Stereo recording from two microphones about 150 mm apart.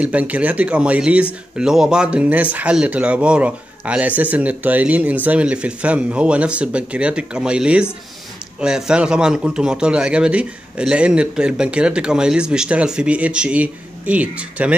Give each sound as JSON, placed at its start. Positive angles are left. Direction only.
{"t": 0.0, "sound": "speech", "side_deg": -10}